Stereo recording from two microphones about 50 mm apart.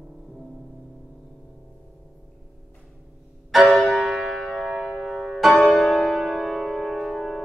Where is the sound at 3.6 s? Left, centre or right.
Centre.